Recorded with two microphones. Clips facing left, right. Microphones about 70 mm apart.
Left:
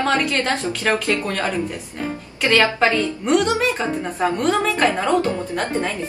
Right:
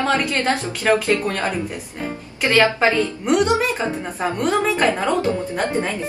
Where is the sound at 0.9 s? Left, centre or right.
Centre.